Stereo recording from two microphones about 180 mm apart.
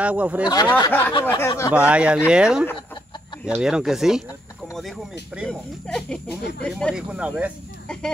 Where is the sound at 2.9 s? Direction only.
25° left (ahead or behind).